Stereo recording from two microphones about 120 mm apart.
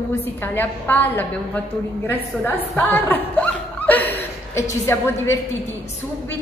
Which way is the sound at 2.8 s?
15° left (ahead or behind).